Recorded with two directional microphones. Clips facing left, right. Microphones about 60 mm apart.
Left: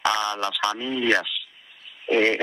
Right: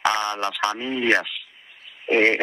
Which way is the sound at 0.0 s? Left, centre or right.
Right.